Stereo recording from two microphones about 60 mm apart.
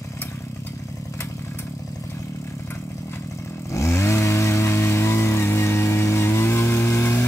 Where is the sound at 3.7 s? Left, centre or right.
Left.